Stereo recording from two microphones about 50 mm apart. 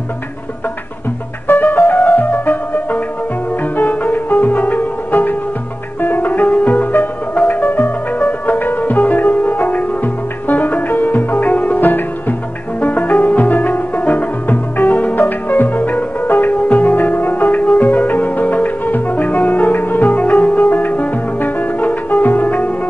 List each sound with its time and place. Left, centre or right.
1.5 s music: left